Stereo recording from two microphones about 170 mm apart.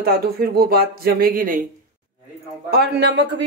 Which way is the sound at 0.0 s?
65° right (ahead or behind).